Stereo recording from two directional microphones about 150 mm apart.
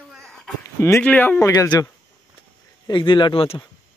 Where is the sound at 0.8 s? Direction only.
15° left (ahead or behind).